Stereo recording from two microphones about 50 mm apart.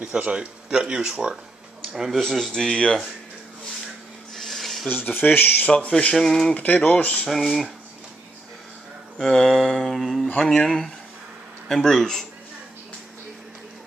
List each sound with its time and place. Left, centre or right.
0.0 s speech: right
2.1 s speech: centre
4.4 s filing: centre
5.2 s speech: left
5.9 s speech: left
6.1 s speech: centre
6.5 s speech: left
7.2 s a sound: centre
9.2 s speech: centre
9.8 s a sound: centre
10.5 s speech: centre
11.7 s speech: centre